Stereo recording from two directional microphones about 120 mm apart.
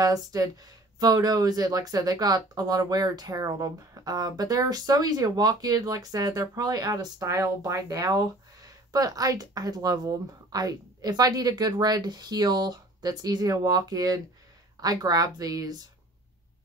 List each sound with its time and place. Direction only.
0.0 s speech: 30° right (ahead or behind)